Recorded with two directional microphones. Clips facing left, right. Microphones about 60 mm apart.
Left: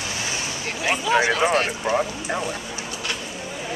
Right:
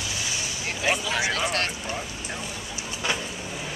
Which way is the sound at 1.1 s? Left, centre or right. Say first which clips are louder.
Left 7 dB; left.